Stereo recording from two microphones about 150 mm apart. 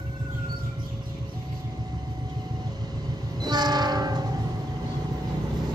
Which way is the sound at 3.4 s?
30° right (ahead or behind).